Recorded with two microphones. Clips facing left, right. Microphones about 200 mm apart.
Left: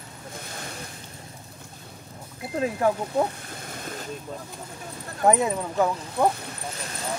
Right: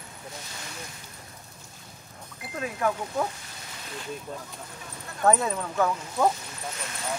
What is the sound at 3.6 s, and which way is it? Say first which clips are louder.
Vehicle: left 4 dB; 50° left (ahead or behind).